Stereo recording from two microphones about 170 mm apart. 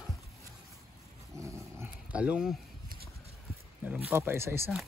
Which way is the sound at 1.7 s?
10° right (ahead or behind).